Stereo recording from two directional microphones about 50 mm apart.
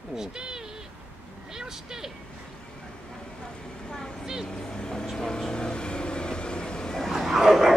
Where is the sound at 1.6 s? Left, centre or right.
Centre.